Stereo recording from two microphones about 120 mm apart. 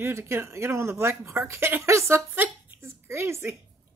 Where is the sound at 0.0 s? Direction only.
20° right (ahead or behind).